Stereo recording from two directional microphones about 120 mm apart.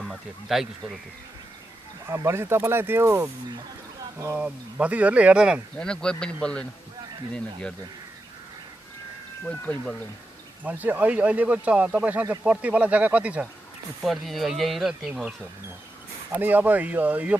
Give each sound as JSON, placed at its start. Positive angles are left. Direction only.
{"t": 0.0, "sound": "speech", "side_deg": 0}
{"t": 2.0, "sound": "speech", "side_deg": -20}
{"t": 4.4, "sound": "speech", "side_deg": -10}
{"t": 5.8, "sound": "a man's voice", "side_deg": 5}
{"t": 10.6, "sound": "speech", "side_deg": -15}
{"t": 14.0, "sound": "speech", "side_deg": 0}
{"t": 16.3, "sound": "speech", "side_deg": -15}